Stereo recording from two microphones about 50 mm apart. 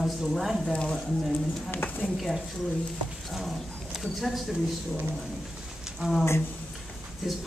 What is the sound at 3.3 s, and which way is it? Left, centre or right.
Speech, centre.